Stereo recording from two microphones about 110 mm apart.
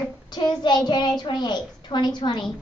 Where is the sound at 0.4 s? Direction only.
40° left (ahead or behind).